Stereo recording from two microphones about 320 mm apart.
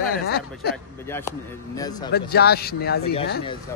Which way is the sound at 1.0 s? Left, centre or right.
Centre.